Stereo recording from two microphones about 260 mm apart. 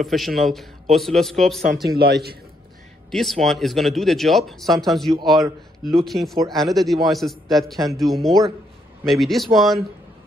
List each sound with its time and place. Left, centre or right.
0.0 s speech: centre
1.7 s speech: right
3.1 s speech: centre